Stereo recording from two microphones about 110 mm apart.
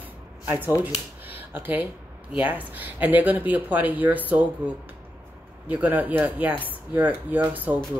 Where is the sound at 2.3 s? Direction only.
15° right (ahead or behind).